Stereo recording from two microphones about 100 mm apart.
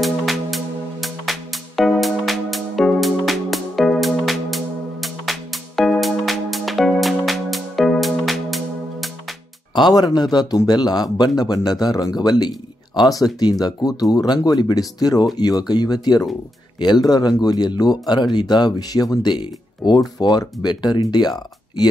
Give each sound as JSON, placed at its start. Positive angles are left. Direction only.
{"t": 0.0, "sound": "music", "side_deg": 0}
{"t": 9.8, "sound": "a man's voice", "side_deg": 40}